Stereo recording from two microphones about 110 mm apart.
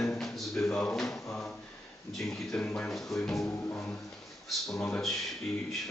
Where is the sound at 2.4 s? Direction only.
10° left (ahead or behind).